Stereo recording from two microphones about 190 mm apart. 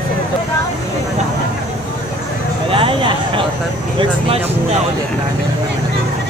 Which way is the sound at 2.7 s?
30° right (ahead or behind).